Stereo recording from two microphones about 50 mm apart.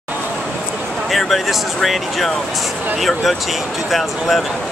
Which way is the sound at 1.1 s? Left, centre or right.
Centre.